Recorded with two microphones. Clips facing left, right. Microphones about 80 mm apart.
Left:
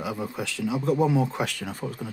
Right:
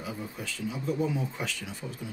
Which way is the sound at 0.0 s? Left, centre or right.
Left.